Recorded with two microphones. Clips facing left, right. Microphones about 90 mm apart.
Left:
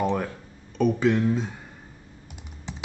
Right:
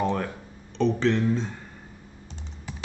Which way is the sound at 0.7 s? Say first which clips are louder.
Left 1 dB; 10° left (ahead or behind).